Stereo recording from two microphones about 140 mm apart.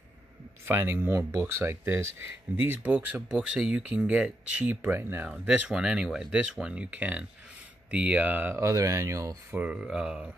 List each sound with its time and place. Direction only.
0.7 s speech: 15° right (ahead or behind)
9.5 s speech: 10° right (ahead or behind)